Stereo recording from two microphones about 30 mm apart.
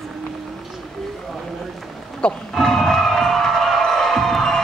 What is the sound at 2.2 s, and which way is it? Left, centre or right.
Speech, left.